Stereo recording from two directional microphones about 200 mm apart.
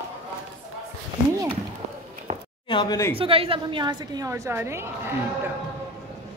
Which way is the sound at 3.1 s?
25° right (ahead or behind).